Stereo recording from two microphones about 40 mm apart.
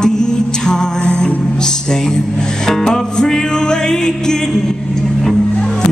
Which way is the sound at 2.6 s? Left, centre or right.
Centre.